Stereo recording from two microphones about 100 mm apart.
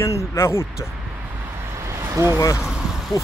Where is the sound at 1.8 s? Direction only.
30° right (ahead or behind).